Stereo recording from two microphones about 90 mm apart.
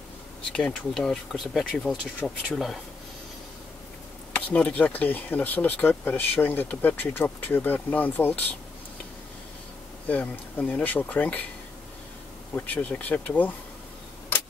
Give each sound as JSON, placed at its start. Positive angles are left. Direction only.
{"t": 0.5, "sound": "speech", "side_deg": 10}
{"t": 4.3, "sound": "speech", "side_deg": 15}
{"t": 10.0, "sound": "speech", "side_deg": 15}
{"t": 12.5, "sound": "speech", "side_deg": 20}